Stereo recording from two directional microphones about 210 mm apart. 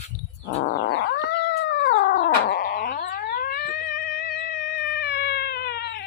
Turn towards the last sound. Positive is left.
turn(degrees=50)  # may be behind; listen again after turning